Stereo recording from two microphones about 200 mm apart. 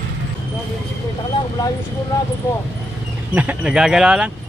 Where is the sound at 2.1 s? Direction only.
20° left (ahead or behind).